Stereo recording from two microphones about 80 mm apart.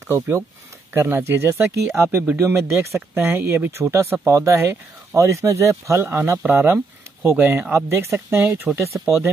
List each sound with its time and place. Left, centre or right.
0.1 s speech: right